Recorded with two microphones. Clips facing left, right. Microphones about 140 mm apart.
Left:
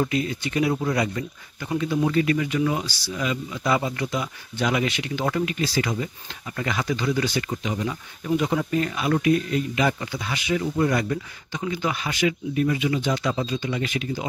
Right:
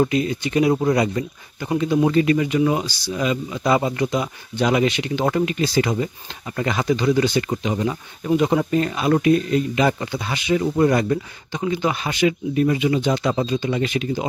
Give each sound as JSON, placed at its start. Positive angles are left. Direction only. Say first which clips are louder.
{"t": 0.0, "sound": "speech", "louder": "right 5 dB", "side_deg": -25}
{"t": 7.4, "sound": "speech", "louder": "right 5 dB", "side_deg": -35}